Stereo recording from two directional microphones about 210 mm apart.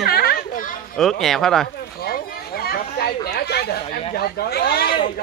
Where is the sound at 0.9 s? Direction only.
Centre (ahead or behind).